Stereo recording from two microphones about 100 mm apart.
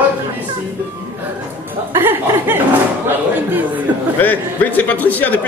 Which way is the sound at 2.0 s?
20° right (ahead or behind).